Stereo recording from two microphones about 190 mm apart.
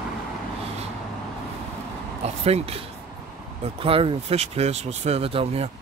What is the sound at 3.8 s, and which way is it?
Speech, 30° right (ahead or behind).